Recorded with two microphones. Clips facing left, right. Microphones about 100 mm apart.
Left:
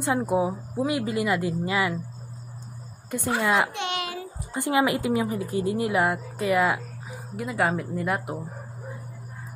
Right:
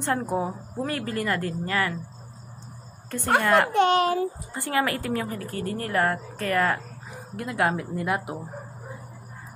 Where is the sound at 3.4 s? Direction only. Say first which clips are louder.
Right 2 dB; 15° left (ahead or behind).